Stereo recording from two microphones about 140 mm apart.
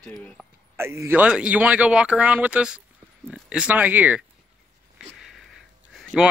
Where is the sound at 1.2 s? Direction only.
5° right (ahead or behind).